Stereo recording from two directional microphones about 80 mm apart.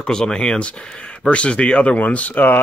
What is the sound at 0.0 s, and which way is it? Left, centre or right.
Speech, centre.